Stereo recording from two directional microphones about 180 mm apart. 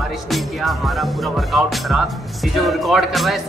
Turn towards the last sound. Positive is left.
turn(degrees=0)  # may be behind; listen again after turning